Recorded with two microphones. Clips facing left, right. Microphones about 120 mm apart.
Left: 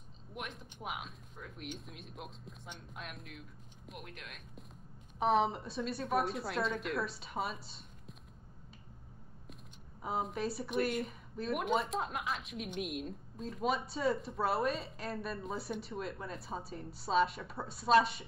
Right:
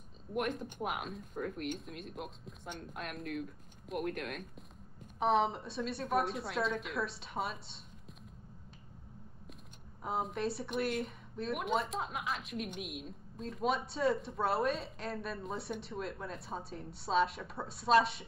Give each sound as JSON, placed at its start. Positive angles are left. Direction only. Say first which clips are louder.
{"t": 0.3, "sound": "speech", "louder": "right 10 dB", "side_deg": -50}
{"t": 1.5, "sound": "speech", "louder": "right 6 dB", "side_deg": 0}
{"t": 4.0, "sound": "speech", "louder": "right 13 dB", "side_deg": -50}
{"t": 5.2, "sound": "speech", "louder": "even", "side_deg": 0}
{"t": 10.0, "sound": "speech", "louder": "right 1 dB", "side_deg": 0}